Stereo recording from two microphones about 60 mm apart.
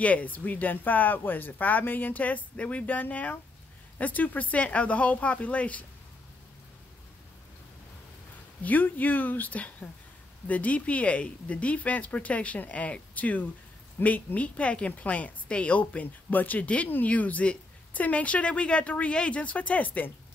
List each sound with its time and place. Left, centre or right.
0.0 s speech: left
8.6 s speech: left